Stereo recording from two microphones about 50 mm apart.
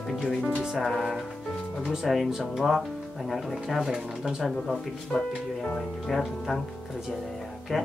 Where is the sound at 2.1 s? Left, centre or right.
Centre.